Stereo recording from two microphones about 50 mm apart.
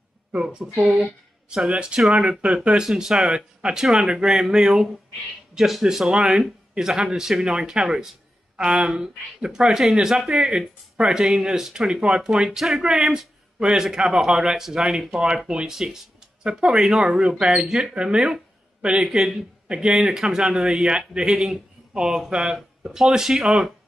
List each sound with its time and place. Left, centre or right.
0.3 s a man's voice: centre
2.8 s a man's voice: centre